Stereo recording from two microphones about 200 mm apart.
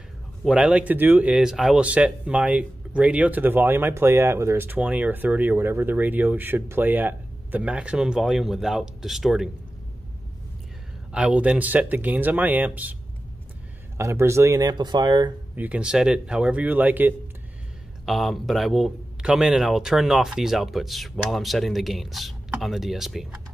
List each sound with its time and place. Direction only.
0.4 s speech: 5° right (ahead or behind)
11.1 s speech: 5° right (ahead or behind)
13.9 s speech: 15° right (ahead or behind)
15.5 s a man's voice: 5° right (ahead or behind)